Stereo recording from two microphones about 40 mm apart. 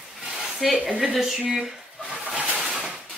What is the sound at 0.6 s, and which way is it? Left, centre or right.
Speech, centre.